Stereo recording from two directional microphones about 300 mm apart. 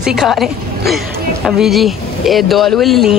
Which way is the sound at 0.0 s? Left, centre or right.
Centre.